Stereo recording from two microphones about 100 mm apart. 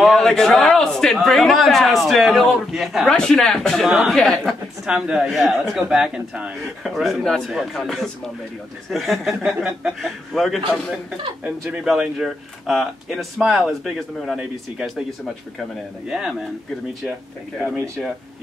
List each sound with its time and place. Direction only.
0.0 s a man's voice: 5° left (ahead or behind)
11.7 s a man's voice: 5° right (ahead or behind)